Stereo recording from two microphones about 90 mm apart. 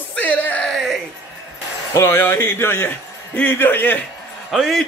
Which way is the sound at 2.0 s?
30° left (ahead or behind).